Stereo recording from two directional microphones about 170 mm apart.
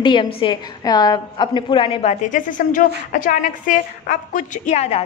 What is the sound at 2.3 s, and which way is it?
A woman's voice, 50° left (ahead or behind).